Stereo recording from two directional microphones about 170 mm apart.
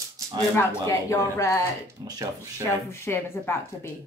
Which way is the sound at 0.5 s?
15° left (ahead or behind).